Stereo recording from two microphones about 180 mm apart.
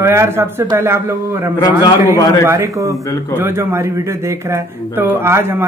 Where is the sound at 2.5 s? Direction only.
15° right (ahead or behind).